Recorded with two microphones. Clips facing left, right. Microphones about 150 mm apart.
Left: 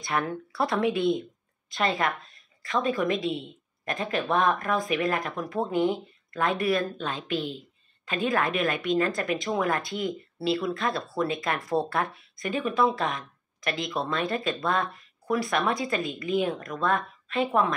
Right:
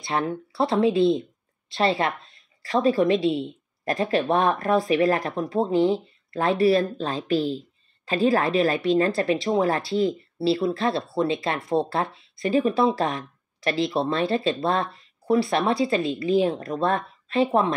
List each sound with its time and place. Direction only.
0.0 s a woman's voice: 25° right (ahead or behind)